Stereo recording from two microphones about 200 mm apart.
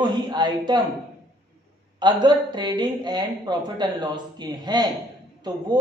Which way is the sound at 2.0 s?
20° right (ahead or behind).